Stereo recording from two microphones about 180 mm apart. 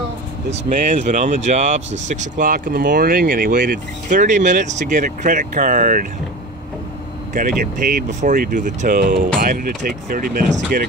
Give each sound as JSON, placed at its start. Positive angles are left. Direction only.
{"t": 0.5, "sound": "speech", "side_deg": -45}
{"t": 7.3, "sound": "speech", "side_deg": -50}